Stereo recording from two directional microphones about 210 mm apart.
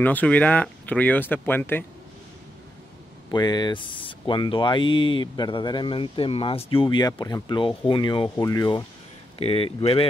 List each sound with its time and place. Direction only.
0.0 s speech: 10° left (ahead or behind)
3.3 s speech: 20° left (ahead or behind)